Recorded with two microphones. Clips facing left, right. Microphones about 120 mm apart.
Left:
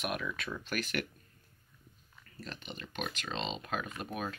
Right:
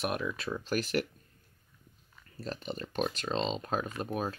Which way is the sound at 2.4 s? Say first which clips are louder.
Right 8 dB; 35° right (ahead or behind).